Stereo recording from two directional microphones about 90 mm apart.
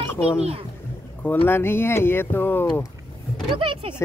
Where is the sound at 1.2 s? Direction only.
20° left (ahead or behind).